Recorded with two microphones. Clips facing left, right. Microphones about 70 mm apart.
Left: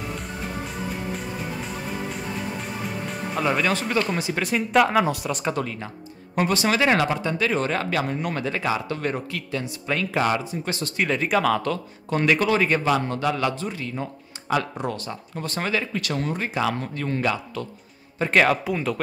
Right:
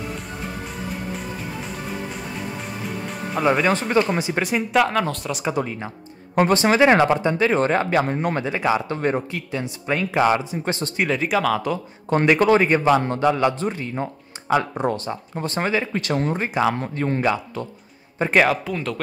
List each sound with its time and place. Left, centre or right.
3.4 s speech: right
4.7 s speech: centre
5.3 s speech: centre
5.6 s speech: centre
6.3 s speech: right
8.5 s speech: centre
11.1 s speech: centre
12.3 s a man's voice: right
18.3 s speech: centre
18.6 s speech: centre